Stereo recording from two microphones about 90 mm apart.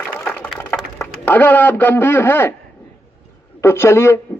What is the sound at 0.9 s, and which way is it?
A man's voice, 20° left (ahead or behind).